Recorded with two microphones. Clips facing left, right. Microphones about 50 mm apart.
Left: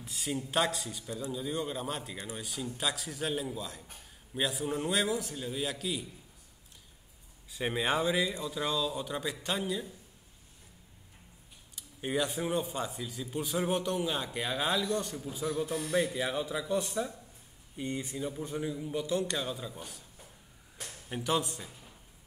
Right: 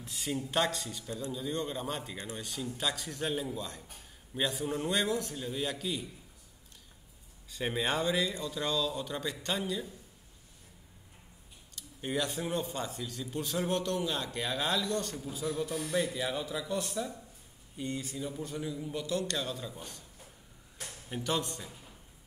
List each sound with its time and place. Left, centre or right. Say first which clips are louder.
0.0 s a man's voice: even; centre
2.1 s a man's voice: even; centre
2.4 s a man's voice: even; centre
7.5 s a man's voice: left 1 dB; centre
11.7 s a man's voice: left 1 dB; centre
18.8 s a man's voice: left 2 dB; centre
21.1 s a man's voice: left 2 dB; centre